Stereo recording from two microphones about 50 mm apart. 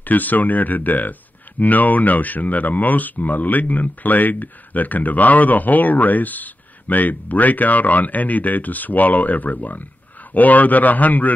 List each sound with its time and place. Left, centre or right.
0.0 s speech: left